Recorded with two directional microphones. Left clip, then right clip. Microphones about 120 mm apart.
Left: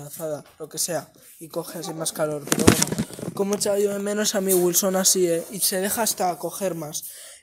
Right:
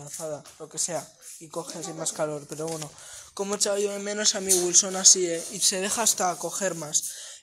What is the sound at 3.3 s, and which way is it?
Speech, 45° left (ahead or behind).